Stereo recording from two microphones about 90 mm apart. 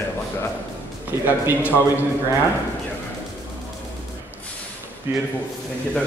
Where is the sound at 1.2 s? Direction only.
20° right (ahead or behind).